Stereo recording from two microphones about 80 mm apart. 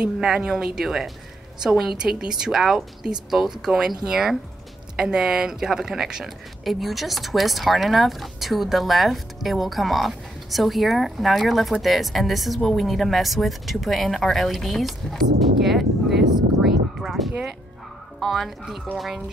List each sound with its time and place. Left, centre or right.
0.0 s speech: centre
16.6 s a sound: centre
17.3 s speech: centre